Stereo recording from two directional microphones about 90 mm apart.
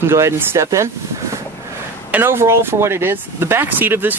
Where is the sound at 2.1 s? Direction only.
25° right (ahead or behind).